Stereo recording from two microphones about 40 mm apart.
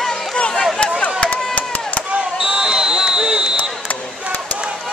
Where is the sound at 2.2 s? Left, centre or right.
Right.